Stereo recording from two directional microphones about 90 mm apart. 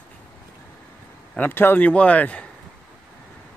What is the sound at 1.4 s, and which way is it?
Speech, 25° left (ahead or behind).